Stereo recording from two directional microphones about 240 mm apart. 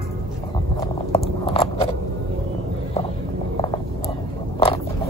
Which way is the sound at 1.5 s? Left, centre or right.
Left.